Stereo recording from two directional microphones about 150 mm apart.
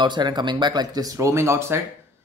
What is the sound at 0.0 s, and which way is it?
Speech, 30° right (ahead or behind).